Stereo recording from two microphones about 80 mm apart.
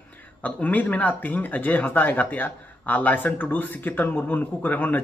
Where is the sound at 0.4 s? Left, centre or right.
Centre.